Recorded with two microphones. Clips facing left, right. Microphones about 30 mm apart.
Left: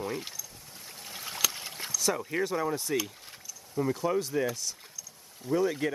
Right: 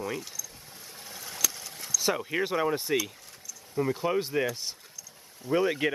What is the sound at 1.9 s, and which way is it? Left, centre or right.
Speech, right.